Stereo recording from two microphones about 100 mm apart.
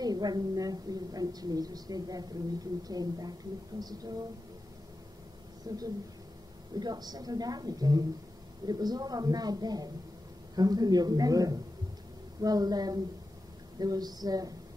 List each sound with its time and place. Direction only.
0.0 s a woman's voice: 40° right (ahead or behind)
5.7 s a woman's voice: 40° right (ahead or behind)